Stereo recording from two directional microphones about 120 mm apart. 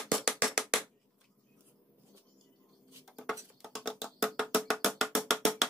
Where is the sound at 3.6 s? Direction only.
5° right (ahead or behind).